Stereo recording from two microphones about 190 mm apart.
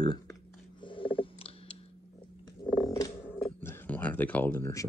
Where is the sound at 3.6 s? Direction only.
10° left (ahead or behind).